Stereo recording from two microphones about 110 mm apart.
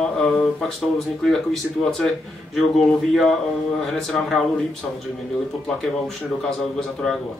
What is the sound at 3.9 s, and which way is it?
Speech, 5° left (ahead or behind).